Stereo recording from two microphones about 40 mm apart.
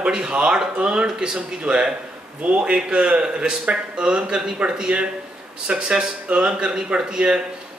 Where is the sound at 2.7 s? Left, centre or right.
Right.